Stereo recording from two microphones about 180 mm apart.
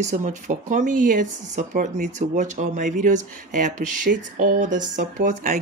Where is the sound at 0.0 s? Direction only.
40° right (ahead or behind).